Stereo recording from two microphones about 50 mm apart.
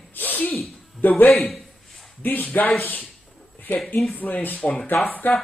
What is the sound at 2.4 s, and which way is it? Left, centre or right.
Speech, left.